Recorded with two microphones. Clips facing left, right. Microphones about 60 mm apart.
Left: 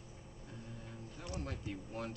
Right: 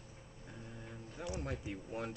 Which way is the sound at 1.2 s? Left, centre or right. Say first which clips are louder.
Right 3 dB; centre.